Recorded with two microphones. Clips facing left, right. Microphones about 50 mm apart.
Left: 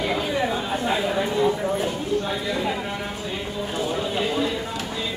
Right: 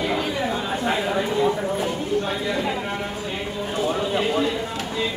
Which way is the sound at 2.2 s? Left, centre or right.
Right.